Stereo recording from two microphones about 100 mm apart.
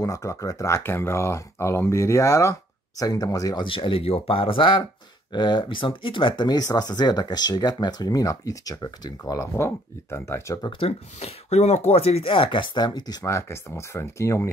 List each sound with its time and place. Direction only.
0.0 s speech: 35° left (ahead or behind)
3.6 s speech: 60° left (ahead or behind); by 9.1 s 40° left (ahead or behind)
9.2 s speech: 30° left (ahead or behind)
10.8 s speech: 90° left; by 13.3 s 40° left (ahead or behind)
13.3 s speech: 25° left (ahead or behind)